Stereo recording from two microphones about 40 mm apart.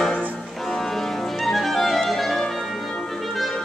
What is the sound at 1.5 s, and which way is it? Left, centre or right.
Music, centre.